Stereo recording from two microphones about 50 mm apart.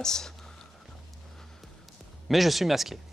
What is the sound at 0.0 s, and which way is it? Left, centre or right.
Whispering, centre.